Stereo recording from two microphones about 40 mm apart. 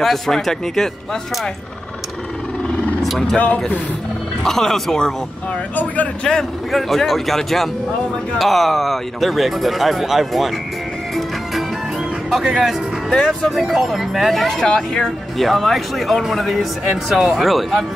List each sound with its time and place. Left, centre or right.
0.0 s speech: centre
3.3 s speech: left
4.5 s speech: centre
6.7 s a man's voice: centre
12.4 s a man's voice: centre
14.6 s speech: centre
15.3 s a man's voice: centre